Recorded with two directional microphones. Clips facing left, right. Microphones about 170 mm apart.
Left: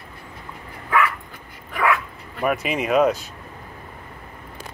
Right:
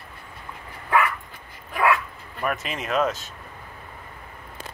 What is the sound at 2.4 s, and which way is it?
Speech, centre (ahead or behind).